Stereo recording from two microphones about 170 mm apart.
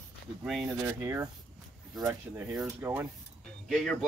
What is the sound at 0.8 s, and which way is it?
Speech, 15° right (ahead or behind).